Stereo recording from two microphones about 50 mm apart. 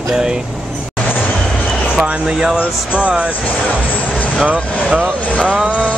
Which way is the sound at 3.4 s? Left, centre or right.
Left.